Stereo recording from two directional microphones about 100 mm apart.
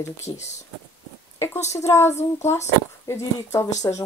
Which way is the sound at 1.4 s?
30° left (ahead or behind).